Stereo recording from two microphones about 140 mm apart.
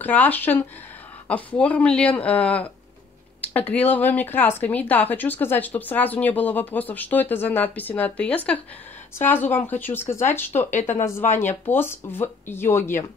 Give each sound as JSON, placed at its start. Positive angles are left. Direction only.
{"t": 0.0, "sound": "speech", "side_deg": 10}